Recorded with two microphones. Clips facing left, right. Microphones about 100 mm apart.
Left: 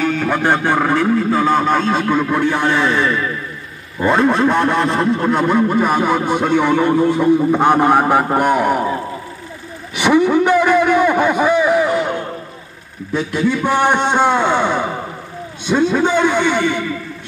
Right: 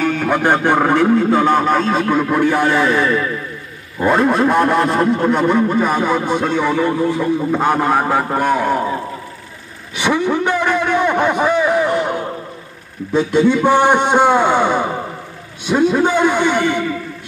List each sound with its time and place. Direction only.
0.0 s a man's voice: 15° right (ahead or behind); by 8.8 s 15° left (ahead or behind)
9.9 s a sound: 15° left (ahead or behind); by 12.3 s 5° right (ahead or behind)
13.1 s a man's voice: 25° right (ahead or behind)